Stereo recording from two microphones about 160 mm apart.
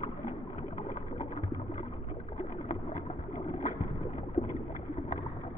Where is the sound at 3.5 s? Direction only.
50° left (ahead or behind).